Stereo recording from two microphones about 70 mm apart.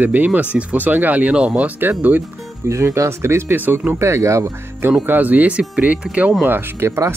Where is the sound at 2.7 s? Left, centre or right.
Right.